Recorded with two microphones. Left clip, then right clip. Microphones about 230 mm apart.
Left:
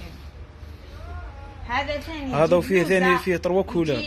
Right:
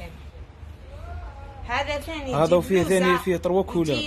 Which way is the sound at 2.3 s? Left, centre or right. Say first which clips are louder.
Left 1 dB; centre.